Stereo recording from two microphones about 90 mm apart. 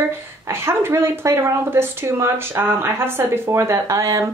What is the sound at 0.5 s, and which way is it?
Speech, 30° right (ahead or behind).